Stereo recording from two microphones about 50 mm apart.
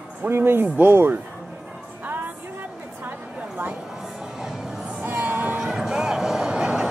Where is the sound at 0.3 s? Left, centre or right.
Right.